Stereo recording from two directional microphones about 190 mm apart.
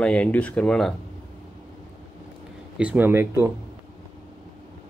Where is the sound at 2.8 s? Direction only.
10° right (ahead or behind).